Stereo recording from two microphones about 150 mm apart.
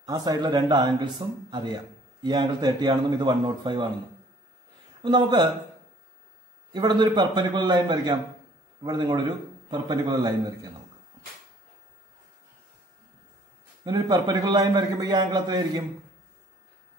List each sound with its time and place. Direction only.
0.0 s a man's voice: 25° right (ahead or behind)
5.0 s speech: 30° right (ahead or behind)
6.7 s a man's voice: 30° right (ahead or behind)
13.8 s a man's voice: 25° right (ahead or behind)